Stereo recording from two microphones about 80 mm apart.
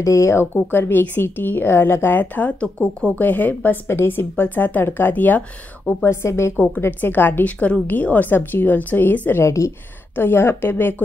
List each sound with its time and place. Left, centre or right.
0.0 s a woman's voice: left
6.0 s speech: left
6.5 s a woman's voice: left
9.4 s speech: left
10.1 s a woman's voice: left